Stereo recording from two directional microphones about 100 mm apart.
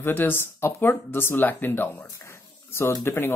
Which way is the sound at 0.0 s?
20° left (ahead or behind).